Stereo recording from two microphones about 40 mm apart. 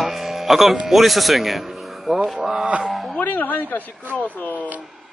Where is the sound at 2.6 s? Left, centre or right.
Right.